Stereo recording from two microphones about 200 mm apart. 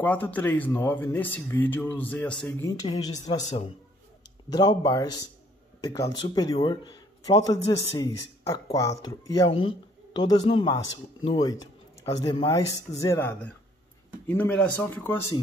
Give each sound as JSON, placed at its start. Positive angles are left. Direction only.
{"t": 0.0, "sound": "a man's voice", "side_deg": 10}